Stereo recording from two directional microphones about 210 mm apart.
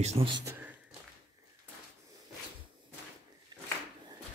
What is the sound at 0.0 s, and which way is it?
Speech, 30° right (ahead or behind).